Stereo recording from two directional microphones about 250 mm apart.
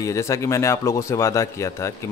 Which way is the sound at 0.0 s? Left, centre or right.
Centre.